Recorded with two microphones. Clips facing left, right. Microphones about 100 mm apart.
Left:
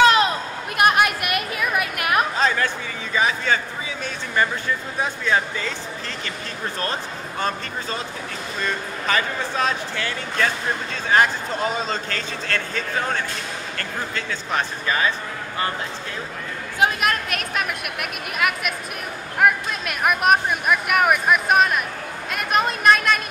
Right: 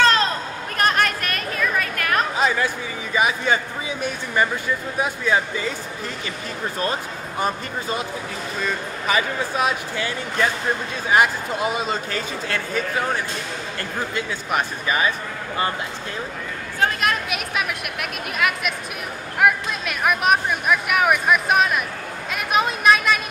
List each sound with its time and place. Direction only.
0.0 s a sound: 15° left (ahead or behind)
0.7 s chatter: 10° left (ahead or behind)
2.3 s chatter: 10° right (ahead or behind)
3.2 s speech: 15° right (ahead or behind)
6.8 s speech: 15° right (ahead or behind)
17.0 s a sound: 5° right (ahead or behind)
18.4 s speech: centre (ahead or behind)